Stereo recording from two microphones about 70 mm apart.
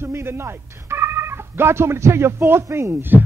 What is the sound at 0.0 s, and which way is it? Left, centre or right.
A man's voice, right.